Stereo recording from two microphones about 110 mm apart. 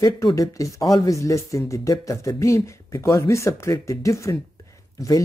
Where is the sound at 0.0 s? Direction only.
30° left (ahead or behind).